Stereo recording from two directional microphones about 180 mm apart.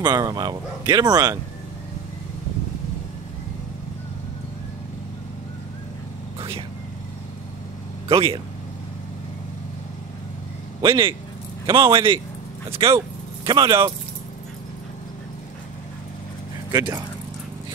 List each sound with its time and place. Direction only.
0.0 s speech: 20° right (ahead or behind)
8.1 s speech: 30° right (ahead or behind)
10.8 s speech: 30° right (ahead or behind)
16.7 s speech: 15° right (ahead or behind)